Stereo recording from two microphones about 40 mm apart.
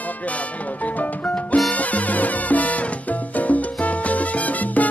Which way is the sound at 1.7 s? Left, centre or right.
Left.